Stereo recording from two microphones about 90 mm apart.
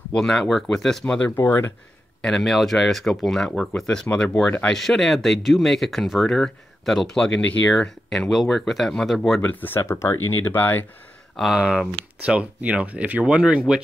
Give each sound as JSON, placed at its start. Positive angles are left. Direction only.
{"t": 0.1, "sound": "speech", "side_deg": 5}
{"t": 1.0, "sound": "speech", "side_deg": 15}
{"t": 1.3, "sound": "speech", "side_deg": 25}
{"t": 2.2, "sound": "speech", "side_deg": 5}
{"t": 9.4, "sound": "speech", "side_deg": 20}
{"t": 11.5, "sound": "speech", "side_deg": -10}